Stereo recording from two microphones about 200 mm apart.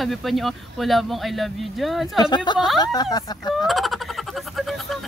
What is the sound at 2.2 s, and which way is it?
Speech, 20° left (ahead or behind).